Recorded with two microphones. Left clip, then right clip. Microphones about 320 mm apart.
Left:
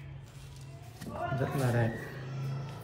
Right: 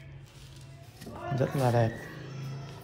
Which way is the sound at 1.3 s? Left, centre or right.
Centre.